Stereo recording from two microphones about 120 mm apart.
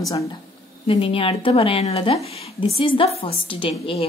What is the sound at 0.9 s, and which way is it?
A woman's voice, 50° left (ahead or behind).